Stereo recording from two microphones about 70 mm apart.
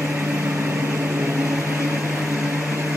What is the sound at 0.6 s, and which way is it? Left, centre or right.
Vehicle, right.